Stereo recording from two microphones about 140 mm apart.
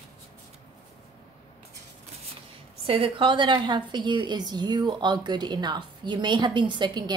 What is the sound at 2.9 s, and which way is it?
A woman's voice, 40° right (ahead or behind).